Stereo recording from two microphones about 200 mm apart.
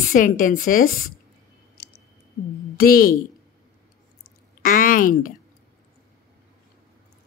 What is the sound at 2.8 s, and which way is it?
Speech, 45° left (ahead or behind).